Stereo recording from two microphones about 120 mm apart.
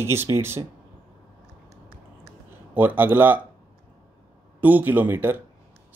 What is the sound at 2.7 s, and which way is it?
Speech, 15° right (ahead or behind).